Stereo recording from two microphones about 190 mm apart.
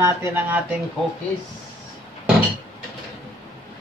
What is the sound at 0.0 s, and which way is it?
Speech, 10° right (ahead or behind).